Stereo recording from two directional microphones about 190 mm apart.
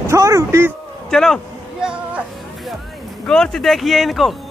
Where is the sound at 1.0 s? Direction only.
Centre (ahead or behind).